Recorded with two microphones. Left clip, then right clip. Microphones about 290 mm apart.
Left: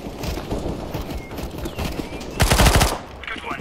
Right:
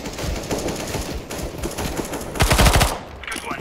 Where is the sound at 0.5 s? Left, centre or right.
Right.